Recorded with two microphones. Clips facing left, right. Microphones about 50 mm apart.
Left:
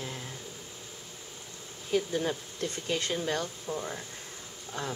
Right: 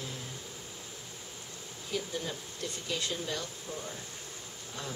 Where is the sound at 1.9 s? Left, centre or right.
Left.